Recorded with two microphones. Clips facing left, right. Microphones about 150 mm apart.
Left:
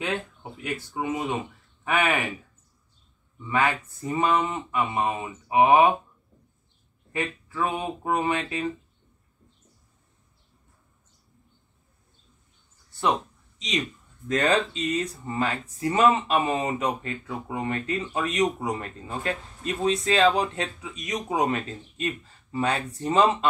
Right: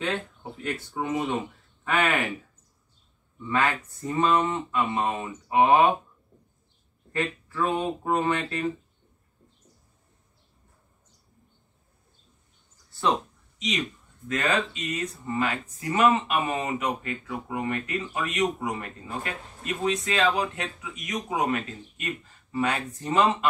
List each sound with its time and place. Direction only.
0.0 s speech: 10° left (ahead or behind)
3.4 s speech: 15° left (ahead or behind)
7.1 s speech: 15° left (ahead or behind)
14.2 s speech: 35° left (ahead or behind)